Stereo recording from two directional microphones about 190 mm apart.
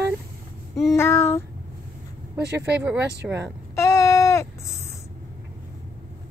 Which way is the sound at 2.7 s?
5° right (ahead or behind).